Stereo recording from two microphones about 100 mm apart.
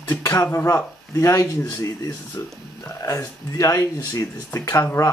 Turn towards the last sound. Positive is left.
turn(degrees=30)  # may be behind; listen again after turning